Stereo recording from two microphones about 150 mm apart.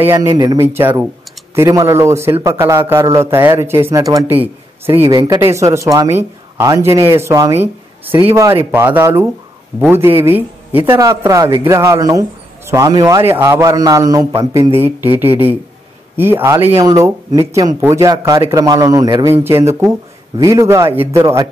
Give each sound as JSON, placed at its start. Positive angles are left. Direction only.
{"t": 0.0, "sound": "a man's voice", "side_deg": -20}
{"t": 11.4, "sound": "speech", "side_deg": -30}
{"t": 11.7, "sound": "a man's voice", "side_deg": -20}